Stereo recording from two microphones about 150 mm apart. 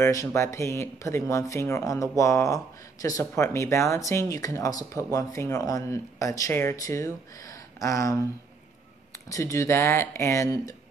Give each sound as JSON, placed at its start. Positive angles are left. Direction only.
{"t": 0.0, "sound": "speech", "side_deg": 20}
{"t": 9.3, "sound": "speech", "side_deg": 20}